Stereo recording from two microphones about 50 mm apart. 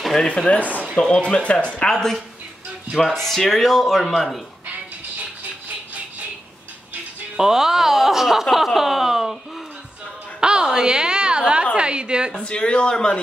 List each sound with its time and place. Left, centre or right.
0.2 s speech: centre
0.9 s speech: centre
2.9 s speech: centre
7.3 s speech: centre
10.4 s a sound: centre
12.4 s speech: centre